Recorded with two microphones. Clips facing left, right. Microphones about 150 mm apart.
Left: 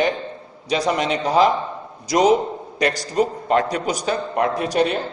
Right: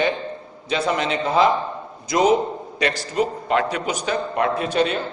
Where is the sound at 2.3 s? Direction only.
40° left (ahead or behind).